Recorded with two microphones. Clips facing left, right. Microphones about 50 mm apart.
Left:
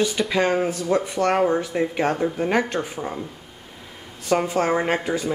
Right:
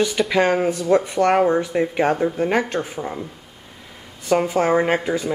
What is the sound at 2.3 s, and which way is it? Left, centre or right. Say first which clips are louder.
Speech: right 2 dB; centre.